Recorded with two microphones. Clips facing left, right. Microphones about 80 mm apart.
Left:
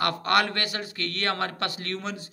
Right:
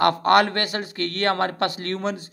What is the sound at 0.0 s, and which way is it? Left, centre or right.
A man's voice, right.